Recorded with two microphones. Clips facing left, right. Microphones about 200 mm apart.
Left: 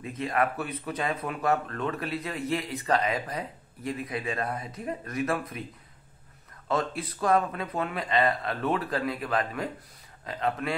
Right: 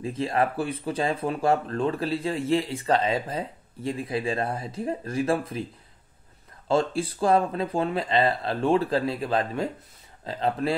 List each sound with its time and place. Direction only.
0.0 s speech: 30° right (ahead or behind)
6.7 s a man's voice: 30° right (ahead or behind)